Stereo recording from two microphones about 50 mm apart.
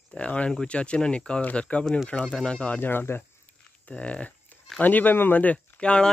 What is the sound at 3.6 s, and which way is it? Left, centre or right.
Speech, left.